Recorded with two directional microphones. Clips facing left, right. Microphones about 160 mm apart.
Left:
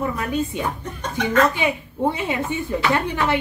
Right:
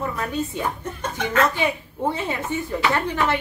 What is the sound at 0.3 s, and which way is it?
Speech, 15° left (ahead or behind).